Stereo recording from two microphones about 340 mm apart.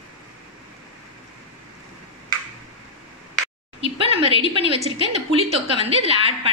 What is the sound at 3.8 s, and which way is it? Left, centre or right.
A woman's voice, centre.